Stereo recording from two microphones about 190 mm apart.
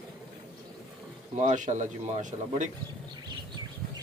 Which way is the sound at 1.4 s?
40° right (ahead or behind).